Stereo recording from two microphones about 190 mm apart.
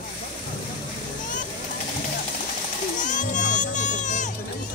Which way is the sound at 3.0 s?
40° left (ahead or behind).